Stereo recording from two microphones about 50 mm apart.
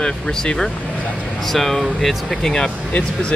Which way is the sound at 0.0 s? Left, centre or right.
Centre.